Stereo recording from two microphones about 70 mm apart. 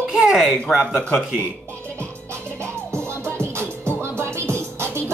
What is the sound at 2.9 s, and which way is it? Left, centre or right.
Music, right.